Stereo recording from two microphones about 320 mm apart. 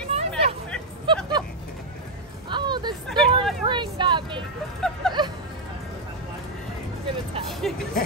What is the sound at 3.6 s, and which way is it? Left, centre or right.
Speech, centre.